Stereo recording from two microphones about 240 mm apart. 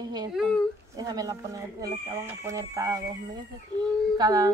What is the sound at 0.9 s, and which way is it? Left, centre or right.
Speech, centre.